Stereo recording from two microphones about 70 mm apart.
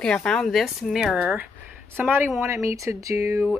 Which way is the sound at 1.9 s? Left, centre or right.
Right.